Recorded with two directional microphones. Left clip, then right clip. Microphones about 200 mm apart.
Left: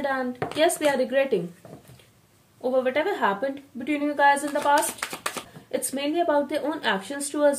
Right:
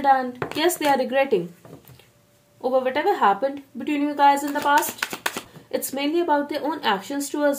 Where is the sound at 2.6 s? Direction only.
30° right (ahead or behind).